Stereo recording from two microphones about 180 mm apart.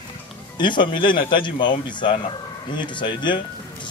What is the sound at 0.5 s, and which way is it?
A man's voice, 25° left (ahead or behind).